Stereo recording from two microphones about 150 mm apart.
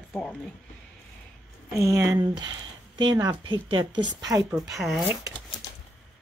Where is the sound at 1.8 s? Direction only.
20° right (ahead or behind).